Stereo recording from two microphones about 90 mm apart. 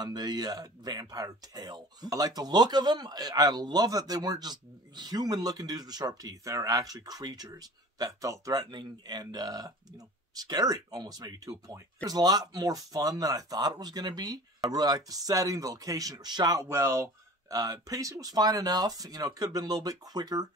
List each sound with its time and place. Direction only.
0.0 s speech: 50° right (ahead or behind)
8.6 s speech: 50° right (ahead or behind)
16.6 s speech: 30° right (ahead or behind)